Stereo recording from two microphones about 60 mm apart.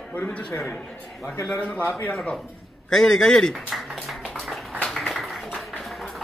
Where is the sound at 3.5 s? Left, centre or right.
Centre.